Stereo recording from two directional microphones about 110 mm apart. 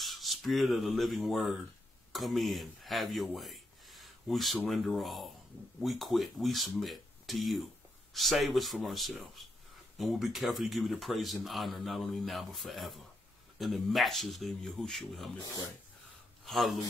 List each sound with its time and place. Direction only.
0.0 s speech: centre (ahead or behind)
16.4 s speech: centre (ahead or behind)